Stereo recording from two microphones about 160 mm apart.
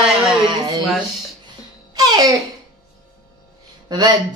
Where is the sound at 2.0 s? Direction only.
25° right (ahead or behind).